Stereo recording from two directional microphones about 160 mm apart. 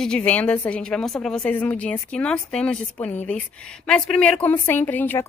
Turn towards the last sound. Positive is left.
turn(degrees=15)  # may be behind; listen again after turning